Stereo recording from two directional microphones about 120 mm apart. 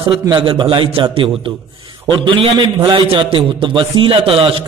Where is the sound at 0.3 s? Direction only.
40° right (ahead or behind).